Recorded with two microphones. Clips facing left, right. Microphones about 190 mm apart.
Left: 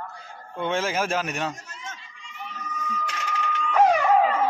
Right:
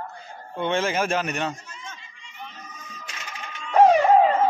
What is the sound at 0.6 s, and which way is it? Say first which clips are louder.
Speech: right 2 dB; 5° left (ahead or behind).